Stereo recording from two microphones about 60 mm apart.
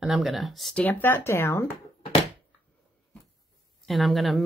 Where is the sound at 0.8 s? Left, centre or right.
Left.